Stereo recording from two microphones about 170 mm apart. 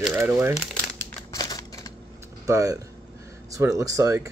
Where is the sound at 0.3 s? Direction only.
10° right (ahead or behind).